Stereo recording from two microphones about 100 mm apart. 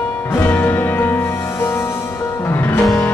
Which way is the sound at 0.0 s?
20° left (ahead or behind).